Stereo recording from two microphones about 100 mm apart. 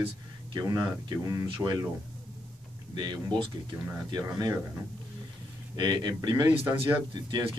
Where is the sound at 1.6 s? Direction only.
10° right (ahead or behind).